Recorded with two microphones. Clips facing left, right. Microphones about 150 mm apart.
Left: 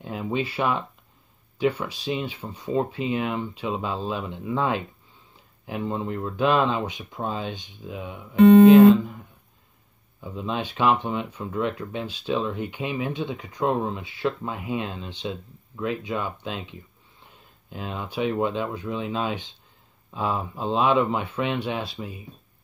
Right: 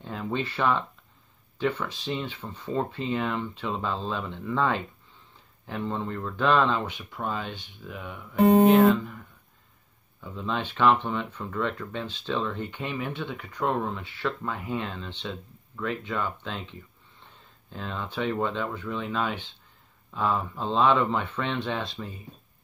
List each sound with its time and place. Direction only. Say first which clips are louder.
0.0 s speech: left 3 dB; 15° left (ahead or behind)
10.2 s speech: left 2 dB; 15° left (ahead or behind)